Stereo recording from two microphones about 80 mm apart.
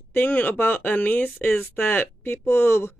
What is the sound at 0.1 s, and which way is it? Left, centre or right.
Speech, left.